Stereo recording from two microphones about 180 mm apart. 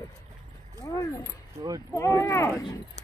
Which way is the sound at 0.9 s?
15° left (ahead or behind).